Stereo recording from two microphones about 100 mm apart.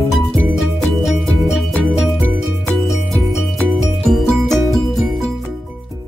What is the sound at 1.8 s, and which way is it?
Music, centre (ahead or behind).